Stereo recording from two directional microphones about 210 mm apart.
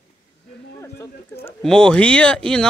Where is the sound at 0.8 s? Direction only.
15° left (ahead or behind).